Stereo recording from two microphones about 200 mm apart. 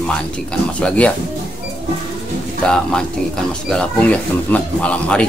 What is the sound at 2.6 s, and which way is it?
A man's voice, 5° left (ahead or behind).